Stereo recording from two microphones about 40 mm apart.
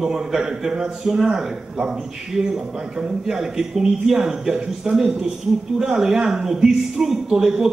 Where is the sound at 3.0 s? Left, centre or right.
Centre.